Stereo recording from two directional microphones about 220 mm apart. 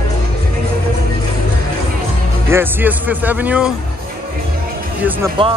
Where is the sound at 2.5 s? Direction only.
10° right (ahead or behind).